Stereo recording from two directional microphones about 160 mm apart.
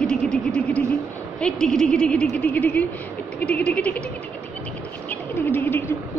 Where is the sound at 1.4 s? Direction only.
5° left (ahead or behind).